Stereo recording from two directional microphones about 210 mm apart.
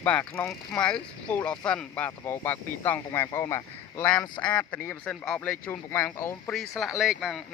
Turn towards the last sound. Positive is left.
turn(degrees=0)  # may be behind; listen again after turning